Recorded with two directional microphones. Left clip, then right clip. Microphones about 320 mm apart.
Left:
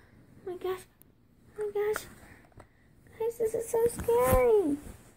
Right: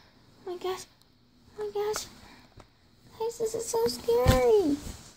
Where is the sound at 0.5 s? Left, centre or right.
Centre.